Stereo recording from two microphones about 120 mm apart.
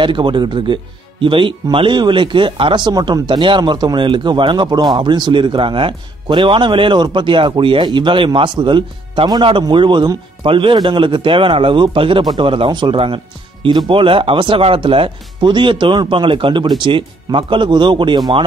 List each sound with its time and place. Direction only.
0.0 s speech: 40° right (ahead or behind)